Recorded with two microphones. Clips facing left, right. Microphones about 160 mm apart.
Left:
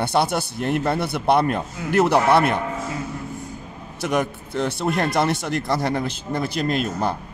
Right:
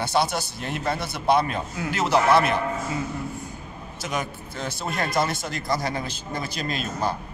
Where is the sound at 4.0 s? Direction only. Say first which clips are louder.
Left 7 dB; 60° left (ahead or behind).